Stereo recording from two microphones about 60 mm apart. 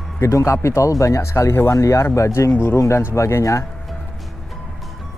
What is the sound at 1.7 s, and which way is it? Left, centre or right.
Speech, left.